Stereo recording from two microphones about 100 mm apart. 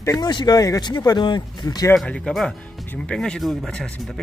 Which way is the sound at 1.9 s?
5° left (ahead or behind).